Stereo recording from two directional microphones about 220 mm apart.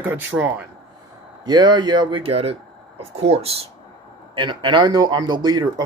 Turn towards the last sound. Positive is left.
turn(degrees=-20)  # may be behind; listen again after turning